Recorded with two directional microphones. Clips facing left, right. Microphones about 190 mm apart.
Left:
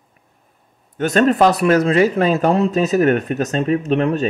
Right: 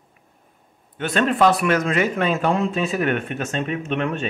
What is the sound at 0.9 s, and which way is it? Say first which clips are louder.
Speech: left 6 dB; 40° left (ahead or behind).